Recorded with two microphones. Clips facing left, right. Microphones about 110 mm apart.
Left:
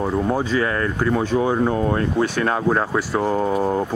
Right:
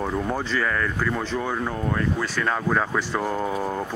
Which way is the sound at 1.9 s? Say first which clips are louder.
Left 5 dB; 55° left (ahead or behind).